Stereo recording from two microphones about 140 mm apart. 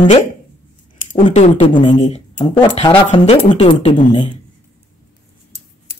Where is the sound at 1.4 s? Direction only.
40° left (ahead or behind).